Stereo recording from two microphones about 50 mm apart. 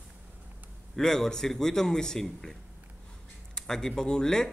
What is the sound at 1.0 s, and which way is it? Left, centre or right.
A man's voice, centre.